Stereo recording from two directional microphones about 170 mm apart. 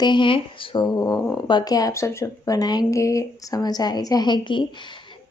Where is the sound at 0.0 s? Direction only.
30° left (ahead or behind).